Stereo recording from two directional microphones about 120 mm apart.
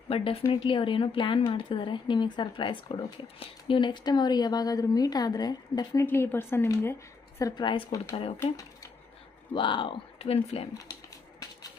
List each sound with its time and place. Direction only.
0.1 s speech: 50° left (ahead or behind); by 6.0 s 35° left (ahead or behind)
6.0 s a woman's voice: 20° left (ahead or behind)
7.5 s speech: 40° left (ahead or behind)
9.5 s speech: 45° left (ahead or behind)
10.7 s a sound: 30° left (ahead or behind)